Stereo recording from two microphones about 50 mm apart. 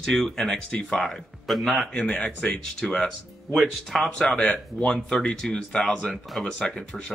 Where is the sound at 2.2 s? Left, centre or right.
Left.